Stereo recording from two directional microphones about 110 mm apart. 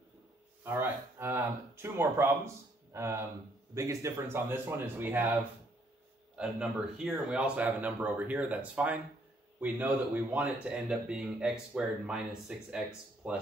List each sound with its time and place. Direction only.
0.7 s speech: 20° right (ahead or behind)
6.3 s speech: 5° right (ahead or behind)